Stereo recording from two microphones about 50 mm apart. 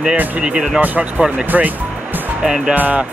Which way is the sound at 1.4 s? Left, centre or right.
Right.